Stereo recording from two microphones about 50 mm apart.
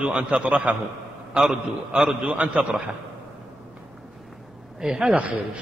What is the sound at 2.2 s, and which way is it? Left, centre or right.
Speech, right.